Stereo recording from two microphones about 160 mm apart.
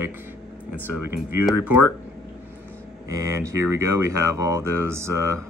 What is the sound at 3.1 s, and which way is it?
Speech, 20° right (ahead or behind).